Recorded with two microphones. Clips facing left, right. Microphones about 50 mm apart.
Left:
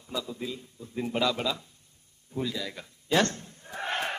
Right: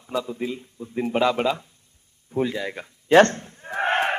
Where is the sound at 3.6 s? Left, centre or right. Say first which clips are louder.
Right 10 dB; right.